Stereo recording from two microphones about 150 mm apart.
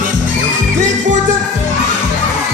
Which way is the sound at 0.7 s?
55° right (ahead or behind).